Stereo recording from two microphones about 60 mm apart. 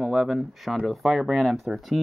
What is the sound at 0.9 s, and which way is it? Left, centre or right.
Speech, centre.